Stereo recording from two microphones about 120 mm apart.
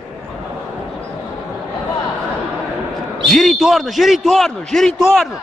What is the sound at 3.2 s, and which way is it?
A man's voice, centre (ahead or behind).